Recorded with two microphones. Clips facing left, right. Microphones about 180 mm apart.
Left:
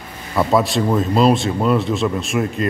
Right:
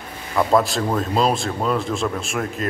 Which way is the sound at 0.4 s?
Centre (ahead or behind).